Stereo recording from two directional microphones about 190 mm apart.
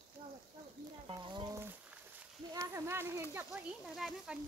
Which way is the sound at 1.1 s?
25° right (ahead or behind).